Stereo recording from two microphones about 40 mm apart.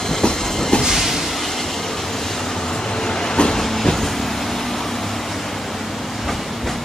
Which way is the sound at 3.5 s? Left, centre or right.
Centre.